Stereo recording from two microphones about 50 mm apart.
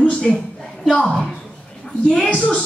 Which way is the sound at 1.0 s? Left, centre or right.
Left.